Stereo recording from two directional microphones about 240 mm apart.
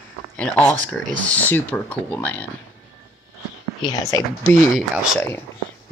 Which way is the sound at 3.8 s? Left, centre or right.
Centre.